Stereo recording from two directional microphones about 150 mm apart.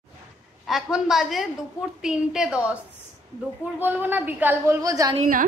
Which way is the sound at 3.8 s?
15° right (ahead or behind).